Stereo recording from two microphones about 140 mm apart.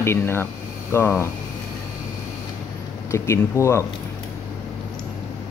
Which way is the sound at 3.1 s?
20° left (ahead or behind).